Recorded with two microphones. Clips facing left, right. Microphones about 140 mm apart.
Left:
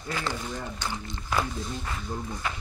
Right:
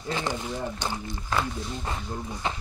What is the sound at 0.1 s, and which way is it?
Speech, 15° right (ahead or behind).